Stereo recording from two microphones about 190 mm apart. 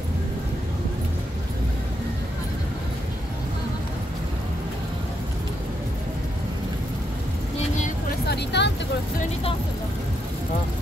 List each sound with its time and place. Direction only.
8.3 s vehicle: 65° left (ahead or behind)